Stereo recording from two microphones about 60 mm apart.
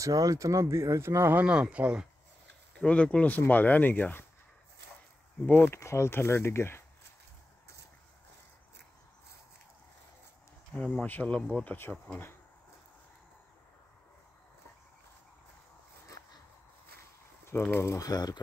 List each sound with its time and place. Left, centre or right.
0.0 s speech: right
1.3 s speech: centre
2.8 s speech: centre
5.7 s speech: left
10.7 s speech: left
17.5 s speech: left
17.9 s speech: left